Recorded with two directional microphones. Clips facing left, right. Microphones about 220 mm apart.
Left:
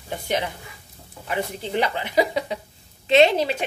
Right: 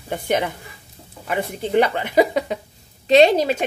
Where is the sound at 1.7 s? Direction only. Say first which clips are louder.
Right 5 dB; 50° right (ahead or behind).